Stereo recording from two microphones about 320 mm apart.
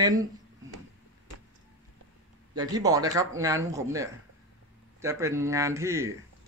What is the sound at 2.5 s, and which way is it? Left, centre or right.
Speech, centre.